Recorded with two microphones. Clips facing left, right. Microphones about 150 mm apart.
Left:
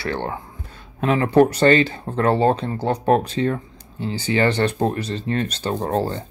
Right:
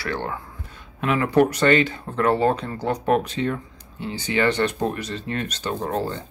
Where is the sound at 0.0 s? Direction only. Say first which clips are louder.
Left 2 dB; 30° left (ahead or behind).